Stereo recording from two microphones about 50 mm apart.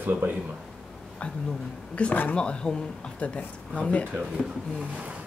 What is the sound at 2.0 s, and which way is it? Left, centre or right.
Speech, left.